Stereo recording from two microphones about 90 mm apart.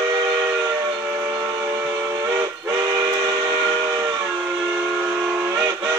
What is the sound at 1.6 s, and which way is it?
Train, 15° right (ahead or behind).